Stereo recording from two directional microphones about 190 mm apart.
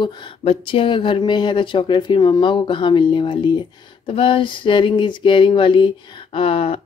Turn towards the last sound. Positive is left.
turn(degrees=30)  # may be behind; listen again after turning